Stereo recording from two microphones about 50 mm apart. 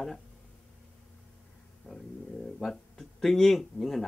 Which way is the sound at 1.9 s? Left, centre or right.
Left.